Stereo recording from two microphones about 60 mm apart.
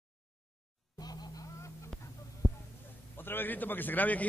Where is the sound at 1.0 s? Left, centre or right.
Left.